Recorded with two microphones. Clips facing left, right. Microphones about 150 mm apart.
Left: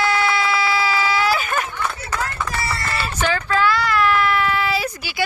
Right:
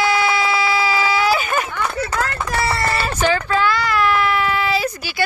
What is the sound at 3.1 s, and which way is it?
Speech, 5° right (ahead or behind).